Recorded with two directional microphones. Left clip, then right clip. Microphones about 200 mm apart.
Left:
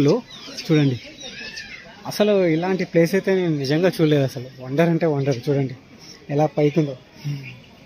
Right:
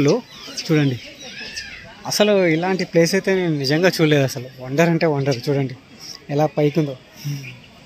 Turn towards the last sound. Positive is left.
turn(degrees=-10)  # may be behind; listen again after turning